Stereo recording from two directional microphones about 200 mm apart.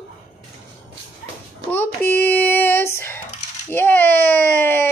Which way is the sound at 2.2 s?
10° left (ahead or behind).